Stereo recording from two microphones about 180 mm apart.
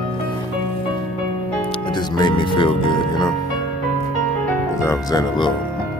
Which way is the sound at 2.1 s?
25° left (ahead or behind).